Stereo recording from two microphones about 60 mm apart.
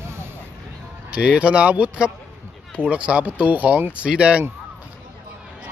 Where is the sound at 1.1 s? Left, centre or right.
Centre.